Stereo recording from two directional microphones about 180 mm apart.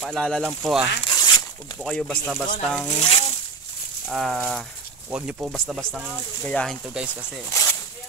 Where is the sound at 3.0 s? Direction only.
30° left (ahead or behind).